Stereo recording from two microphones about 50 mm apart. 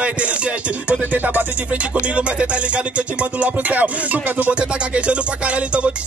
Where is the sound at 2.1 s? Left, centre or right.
Right.